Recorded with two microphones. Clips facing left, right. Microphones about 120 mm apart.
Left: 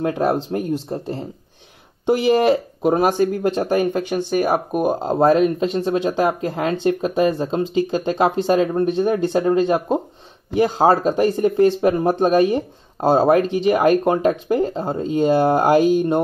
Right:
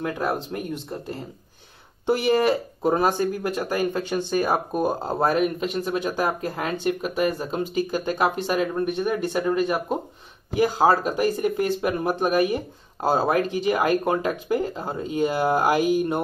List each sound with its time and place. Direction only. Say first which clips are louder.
0.0 s speech: left 7 dB; 30° left (ahead or behind)